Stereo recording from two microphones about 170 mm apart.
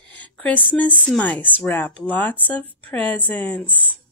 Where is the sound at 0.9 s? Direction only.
10° left (ahead or behind).